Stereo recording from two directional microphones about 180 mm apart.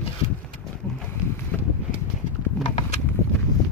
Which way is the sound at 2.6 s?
40° left (ahead or behind).